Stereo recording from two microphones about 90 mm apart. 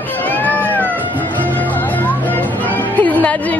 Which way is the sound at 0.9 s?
20° right (ahead or behind).